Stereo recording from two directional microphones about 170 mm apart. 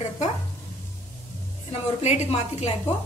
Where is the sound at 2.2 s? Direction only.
40° left (ahead or behind).